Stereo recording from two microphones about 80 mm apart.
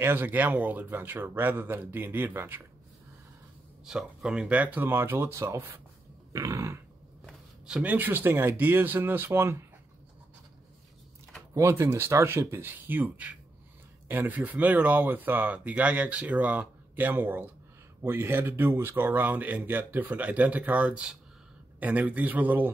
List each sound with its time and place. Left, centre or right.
0.0 s speech: right
3.8 s speech: centre; by 5.5 s right
6.3 s a sound: right
7.8 s speech: right
11.5 s speech: right